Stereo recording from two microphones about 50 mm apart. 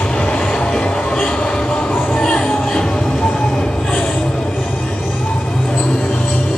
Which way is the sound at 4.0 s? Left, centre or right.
Left.